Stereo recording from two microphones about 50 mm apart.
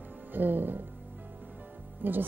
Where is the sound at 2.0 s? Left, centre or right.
Right.